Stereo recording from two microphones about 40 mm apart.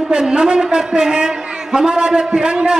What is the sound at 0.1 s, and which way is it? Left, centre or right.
A man's voice, right.